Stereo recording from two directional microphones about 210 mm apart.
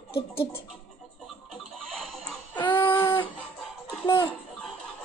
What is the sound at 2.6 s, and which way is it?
Child singing, 25° left (ahead or behind).